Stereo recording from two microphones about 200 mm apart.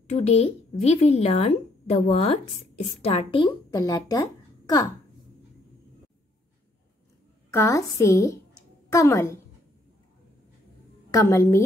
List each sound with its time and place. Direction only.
0.0 s speech: 35° left (ahead or behind); by 4.8 s 20° left (ahead or behind)
7.5 s a woman's voice: 15° left (ahead or behind)
11.1 s a woman's voice: 15° left (ahead or behind)